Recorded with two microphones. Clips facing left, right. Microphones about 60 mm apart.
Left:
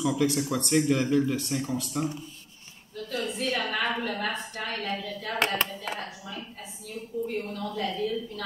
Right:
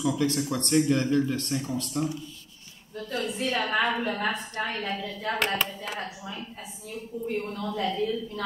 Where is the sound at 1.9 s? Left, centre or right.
Left.